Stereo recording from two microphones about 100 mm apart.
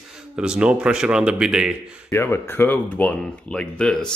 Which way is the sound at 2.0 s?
25° left (ahead or behind).